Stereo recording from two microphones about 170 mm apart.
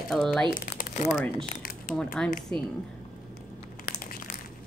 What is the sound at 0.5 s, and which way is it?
Speech, 50° left (ahead or behind).